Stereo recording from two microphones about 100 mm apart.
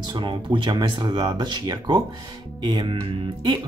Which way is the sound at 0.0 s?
50° right (ahead or behind).